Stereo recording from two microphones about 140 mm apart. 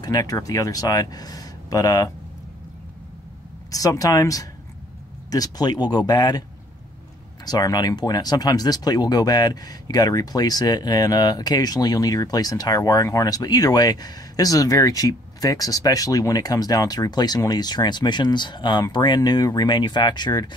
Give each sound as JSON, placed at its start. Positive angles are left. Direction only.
{"t": 0.0, "sound": "speech", "side_deg": 25}
{"t": 3.7, "sound": "speech", "side_deg": 25}
{"t": 7.4, "sound": "speech", "side_deg": 30}